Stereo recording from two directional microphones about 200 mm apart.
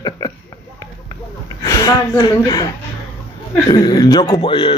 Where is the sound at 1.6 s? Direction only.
15° left (ahead or behind).